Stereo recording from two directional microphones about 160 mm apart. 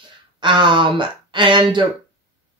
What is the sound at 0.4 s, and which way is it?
Speech, 30° right (ahead or behind).